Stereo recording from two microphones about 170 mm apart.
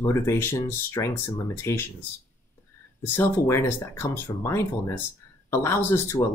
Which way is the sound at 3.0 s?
10° left (ahead or behind).